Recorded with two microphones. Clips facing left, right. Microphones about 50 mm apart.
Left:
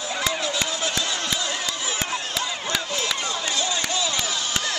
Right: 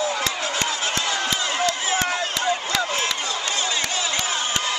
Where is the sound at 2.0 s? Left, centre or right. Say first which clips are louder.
Right 4 dB; right.